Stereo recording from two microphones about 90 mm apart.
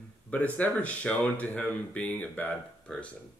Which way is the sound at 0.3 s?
15° left (ahead or behind).